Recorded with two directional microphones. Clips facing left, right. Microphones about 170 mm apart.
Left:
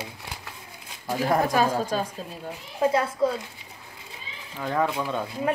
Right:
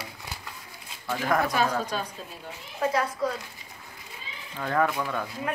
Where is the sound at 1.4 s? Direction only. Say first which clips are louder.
Left 3 dB; 40° left (ahead or behind).